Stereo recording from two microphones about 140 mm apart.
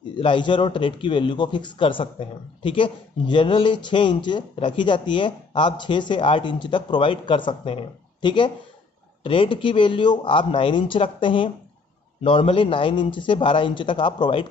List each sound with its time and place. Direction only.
0.1 s a man's voice: 35° left (ahead or behind)